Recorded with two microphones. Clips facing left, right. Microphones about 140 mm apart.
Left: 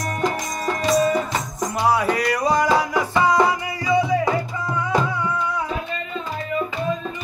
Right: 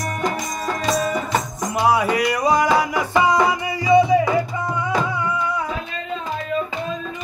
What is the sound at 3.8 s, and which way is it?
Music, 20° right (ahead or behind).